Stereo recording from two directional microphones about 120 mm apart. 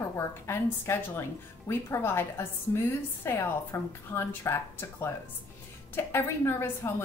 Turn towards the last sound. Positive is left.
turn(degrees=20)  # may be behind; listen again after turning